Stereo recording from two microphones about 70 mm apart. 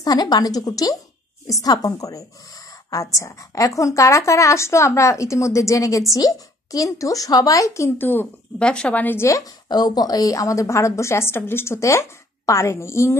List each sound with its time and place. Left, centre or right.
0.0 s a woman's voice: left
8.0 s a woman's voice: left
8.5 s a woman's voice: centre
9.1 s speech: left
9.4 s a woman's voice: left